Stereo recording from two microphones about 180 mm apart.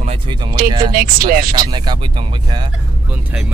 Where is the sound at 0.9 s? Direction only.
55° right (ahead or behind).